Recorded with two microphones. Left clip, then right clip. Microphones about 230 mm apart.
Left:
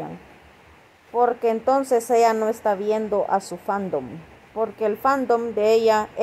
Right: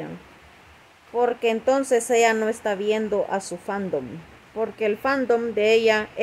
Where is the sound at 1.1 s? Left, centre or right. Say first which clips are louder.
Left 2 dB; centre.